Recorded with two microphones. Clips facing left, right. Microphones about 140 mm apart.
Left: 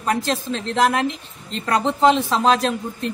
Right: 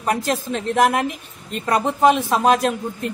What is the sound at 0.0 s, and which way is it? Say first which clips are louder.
A man's voice: right 1 dB; 15° right (ahead or behind).